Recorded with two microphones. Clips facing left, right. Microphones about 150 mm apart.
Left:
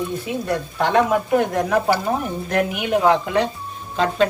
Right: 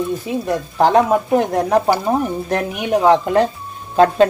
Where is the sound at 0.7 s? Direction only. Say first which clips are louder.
Right 5 dB; 35° right (ahead or behind).